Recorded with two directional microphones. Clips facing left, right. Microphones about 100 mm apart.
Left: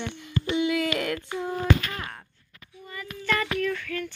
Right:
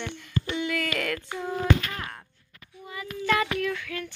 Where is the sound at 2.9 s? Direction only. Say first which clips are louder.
Right 2 dB; 15° right (ahead or behind).